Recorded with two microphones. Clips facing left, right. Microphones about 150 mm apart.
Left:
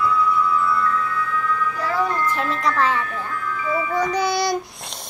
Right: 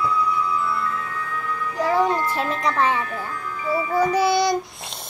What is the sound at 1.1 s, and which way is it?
Music, 35° right (ahead or behind).